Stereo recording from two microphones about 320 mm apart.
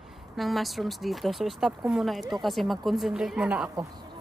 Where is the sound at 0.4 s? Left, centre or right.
Centre.